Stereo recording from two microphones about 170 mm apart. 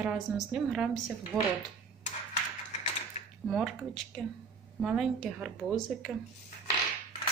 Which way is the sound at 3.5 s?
Centre (ahead or behind).